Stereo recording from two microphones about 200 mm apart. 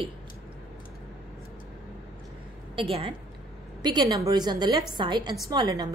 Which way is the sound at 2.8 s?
25° right (ahead or behind).